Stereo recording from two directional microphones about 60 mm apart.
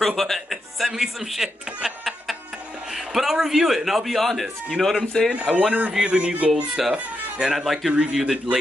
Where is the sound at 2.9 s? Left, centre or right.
Centre.